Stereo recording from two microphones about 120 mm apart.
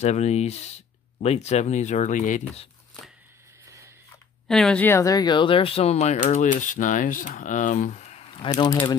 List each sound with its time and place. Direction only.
0.0 s speech: 65° left (ahead or behind); by 2.6 s 90° left
3.6 s a sound: 25° right (ahead or behind)
4.5 s speech: 5° left (ahead or behind)
4.8 s speech: 25° left (ahead or behind); by 6.1 s 65° left (ahead or behind)
6.2 s speech: 90° left; by 8.3 s 65° left (ahead or behind)
8.3 s speech: 45° left (ahead or behind)